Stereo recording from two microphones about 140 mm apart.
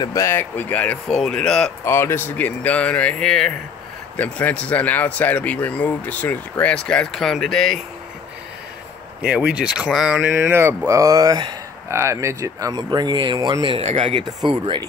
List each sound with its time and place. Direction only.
0.0 s speech: 20° left (ahead or behind); by 1.7 s 5° left (ahead or behind)
1.9 s speech: 15° left (ahead or behind); by 7.8 s centre (ahead or behind)
9.2 s speech: 10° right (ahead or behind); by 14.8 s 35° right (ahead or behind)